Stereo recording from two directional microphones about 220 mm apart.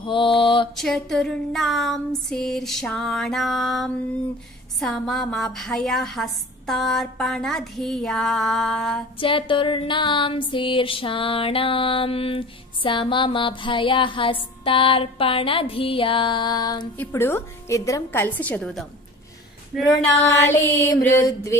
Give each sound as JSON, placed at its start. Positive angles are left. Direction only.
{"t": 0.0, "sound": "mantra", "side_deg": 20}
{"t": 0.7, "sound": "a woman's voice", "side_deg": 0}
{"t": 9.2, "sound": "a sound", "side_deg": 25}
{"t": 17.0, "sound": "a woman's voice", "side_deg": 10}
{"t": 20.4, "sound": "a woman's voice", "side_deg": 10}